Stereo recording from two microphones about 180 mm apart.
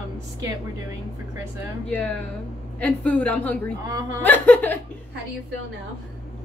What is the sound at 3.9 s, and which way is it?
Speech, 15° right (ahead or behind).